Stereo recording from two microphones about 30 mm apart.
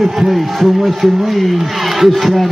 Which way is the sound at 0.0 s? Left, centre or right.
Centre.